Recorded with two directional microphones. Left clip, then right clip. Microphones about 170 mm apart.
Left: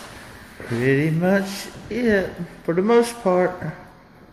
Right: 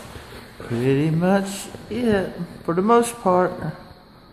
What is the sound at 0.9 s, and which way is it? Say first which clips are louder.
Speech: even; 10° right (ahead or behind).